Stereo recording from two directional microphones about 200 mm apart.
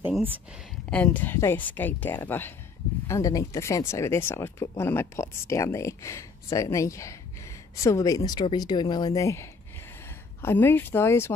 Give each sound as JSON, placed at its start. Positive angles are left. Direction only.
{"t": 0.0, "sound": "speech", "side_deg": -10}
{"t": 0.8, "sound": "speech", "side_deg": 5}